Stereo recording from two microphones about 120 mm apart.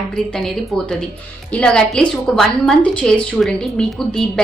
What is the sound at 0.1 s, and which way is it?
A woman's voice, 5° left (ahead or behind).